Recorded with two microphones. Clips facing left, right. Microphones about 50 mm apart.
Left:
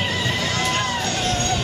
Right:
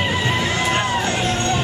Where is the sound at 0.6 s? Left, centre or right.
Right.